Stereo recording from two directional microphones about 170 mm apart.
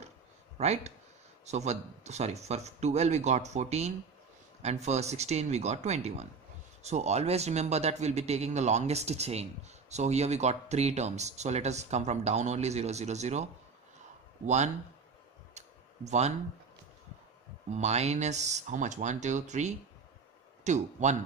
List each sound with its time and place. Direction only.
0.6 s a man's voice: 40° right (ahead or behind)
15.5 s a sound: 40° right (ahead or behind)
17.6 s speech: 40° right (ahead or behind)